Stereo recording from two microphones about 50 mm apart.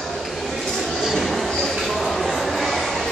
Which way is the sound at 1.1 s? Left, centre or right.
Centre.